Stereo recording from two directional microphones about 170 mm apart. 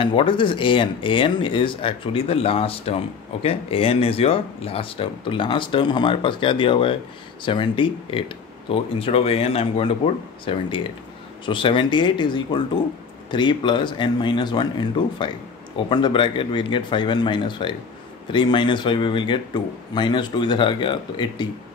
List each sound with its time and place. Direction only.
0.0 s speech: 30° left (ahead or behind)